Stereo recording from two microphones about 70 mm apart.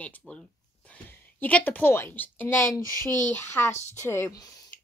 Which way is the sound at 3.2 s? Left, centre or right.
Left.